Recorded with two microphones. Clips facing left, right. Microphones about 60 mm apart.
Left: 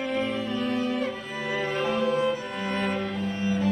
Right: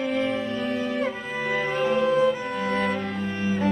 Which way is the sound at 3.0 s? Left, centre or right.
Right.